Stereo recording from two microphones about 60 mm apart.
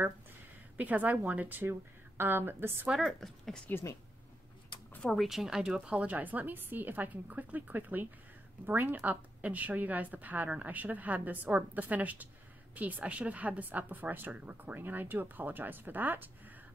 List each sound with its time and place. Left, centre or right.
0.7 s a woman's voice: right
1.6 s speech: right
3.0 s speech: centre
5.0 s speech: centre
5.9 s a woman's voice: right